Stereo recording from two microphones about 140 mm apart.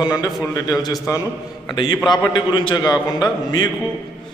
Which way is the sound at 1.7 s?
30° left (ahead or behind).